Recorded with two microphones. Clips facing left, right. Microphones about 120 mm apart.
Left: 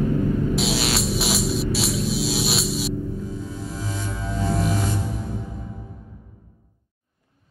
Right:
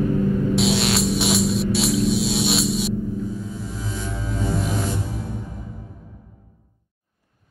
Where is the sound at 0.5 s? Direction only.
Centre (ahead or behind).